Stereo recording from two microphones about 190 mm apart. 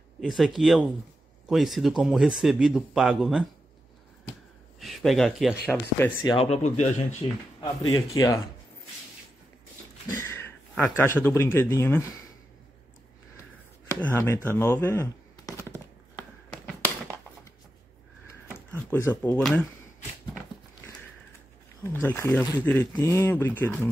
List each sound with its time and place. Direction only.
0.2 s speech: centre (ahead or behind)
4.7 s speech: centre (ahead or behind)
5.7 s speech: 10° left (ahead or behind)
6.2 s speech: 30° left (ahead or behind)
7.6 s speech: 20° left (ahead or behind)
10.1 s a sound: 15° left (ahead or behind)
10.8 s speech: 10° left (ahead or behind)
13.8 s speech: 15° left (ahead or behind)
18.9 s speech: 15° left (ahead or behind)
22.0 s speech: 15° left (ahead or behind)